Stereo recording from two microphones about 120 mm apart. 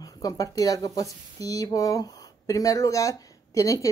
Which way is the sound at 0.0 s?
30° left (ahead or behind).